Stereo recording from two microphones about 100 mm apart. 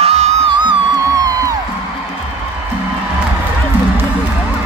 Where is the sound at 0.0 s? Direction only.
90° right.